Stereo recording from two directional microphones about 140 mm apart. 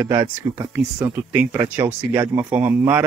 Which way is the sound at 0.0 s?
20° right (ahead or behind).